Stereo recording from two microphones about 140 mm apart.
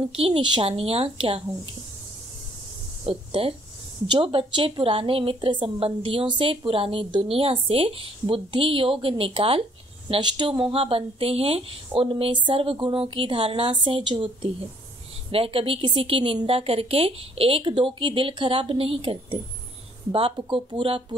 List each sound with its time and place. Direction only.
0.1 s a woman's voice: 40° right (ahead or behind)
3.1 s a woman's voice: 40° right (ahead or behind)